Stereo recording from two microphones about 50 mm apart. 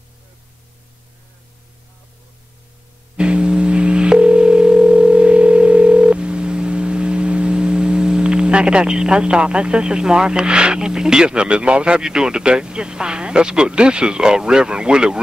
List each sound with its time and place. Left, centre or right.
3.2 s dial tone: centre